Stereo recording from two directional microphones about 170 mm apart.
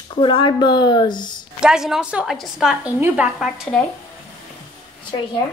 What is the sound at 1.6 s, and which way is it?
A woman's voice, 5° right (ahead or behind).